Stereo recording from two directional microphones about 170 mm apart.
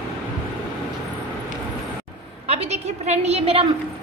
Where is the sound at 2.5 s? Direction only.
40° right (ahead or behind).